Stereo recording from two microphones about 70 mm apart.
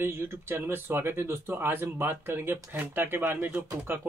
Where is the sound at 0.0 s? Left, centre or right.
Right.